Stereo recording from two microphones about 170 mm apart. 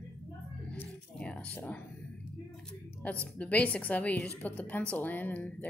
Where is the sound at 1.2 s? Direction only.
5° left (ahead or behind).